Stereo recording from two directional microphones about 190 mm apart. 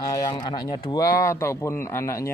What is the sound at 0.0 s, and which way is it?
Speech, 20° left (ahead or behind).